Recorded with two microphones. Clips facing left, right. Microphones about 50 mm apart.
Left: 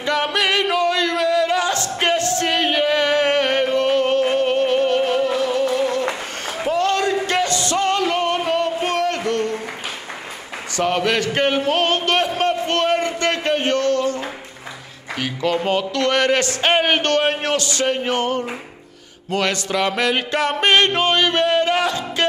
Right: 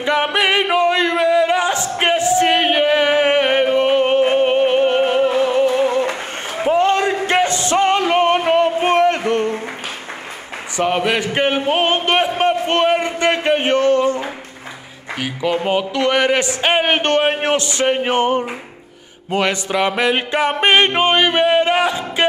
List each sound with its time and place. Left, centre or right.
0.0 s music: right
10.8 s a sound: centre
15.1 s a man's voice: centre
19.3 s music: centre